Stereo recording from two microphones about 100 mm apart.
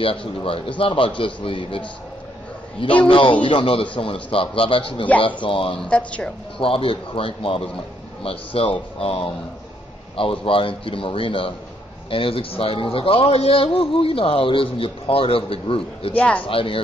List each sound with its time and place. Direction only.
0.0 s a man's voice: 65° left (ahead or behind)
3.1 s a man's voice: 60° left (ahead or behind)
5.9 s speech: 10° left (ahead or behind)
6.6 s a man's voice: 65° left (ahead or behind)
16.2 s speech: 15° left (ahead or behind)
16.4 s a man's voice: 65° left (ahead or behind)